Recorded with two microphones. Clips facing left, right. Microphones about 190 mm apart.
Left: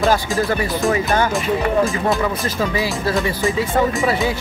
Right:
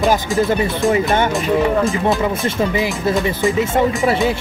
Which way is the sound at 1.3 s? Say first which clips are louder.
Right 2 dB; centre (ahead or behind).